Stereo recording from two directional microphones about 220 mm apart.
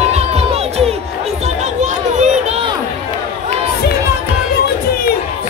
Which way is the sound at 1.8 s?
35° right (ahead or behind).